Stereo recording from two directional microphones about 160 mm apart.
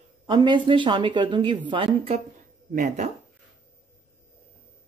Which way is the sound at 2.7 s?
50° right (ahead or behind).